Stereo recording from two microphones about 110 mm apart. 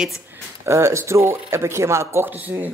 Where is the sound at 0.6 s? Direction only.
25° right (ahead or behind).